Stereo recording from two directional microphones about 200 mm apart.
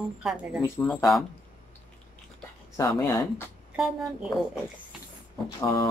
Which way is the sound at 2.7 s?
15° left (ahead or behind).